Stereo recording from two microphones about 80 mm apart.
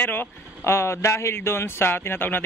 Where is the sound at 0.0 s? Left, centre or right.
Left.